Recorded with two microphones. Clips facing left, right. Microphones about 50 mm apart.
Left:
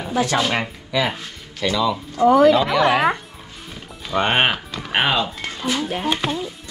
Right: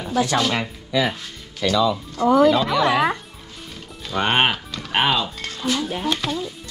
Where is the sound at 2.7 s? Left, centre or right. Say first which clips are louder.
Left 2 dB; left.